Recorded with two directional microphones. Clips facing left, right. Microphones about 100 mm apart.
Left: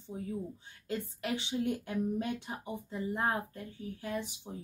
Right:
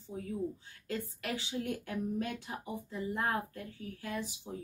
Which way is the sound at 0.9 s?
20° left (ahead or behind).